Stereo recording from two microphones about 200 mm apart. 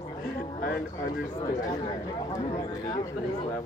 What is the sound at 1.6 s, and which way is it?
A man's voice, 15° left (ahead or behind).